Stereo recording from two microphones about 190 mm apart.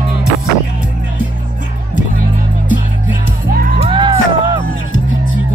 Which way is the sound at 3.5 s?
50° right (ahead or behind).